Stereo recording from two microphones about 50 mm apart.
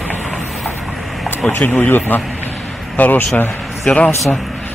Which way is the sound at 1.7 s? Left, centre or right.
Left.